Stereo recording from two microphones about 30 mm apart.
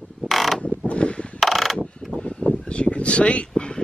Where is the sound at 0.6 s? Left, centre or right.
Left.